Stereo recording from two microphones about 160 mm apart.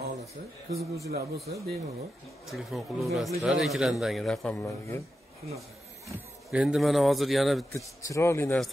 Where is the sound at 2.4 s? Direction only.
Centre (ahead or behind).